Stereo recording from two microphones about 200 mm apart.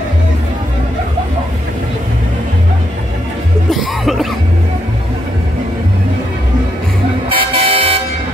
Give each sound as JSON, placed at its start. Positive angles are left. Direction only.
{"t": 3.7, "sound": "cough", "side_deg": 0}
{"t": 7.2, "sound": "vehicle", "side_deg": -30}